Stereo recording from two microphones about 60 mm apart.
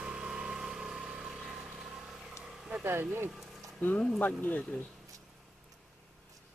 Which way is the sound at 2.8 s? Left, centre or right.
Right.